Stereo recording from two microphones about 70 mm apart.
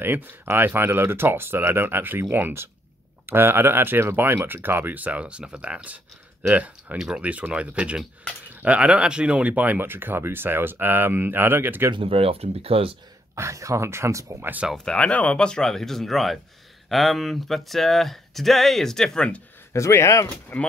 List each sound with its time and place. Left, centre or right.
0.0 s speech: right
7.0 s speech: centre
7.2 s speech: right
13.3 s speech: right
14.9 s speech: centre
19.7 s speech: left
20.5 s mechanisms: left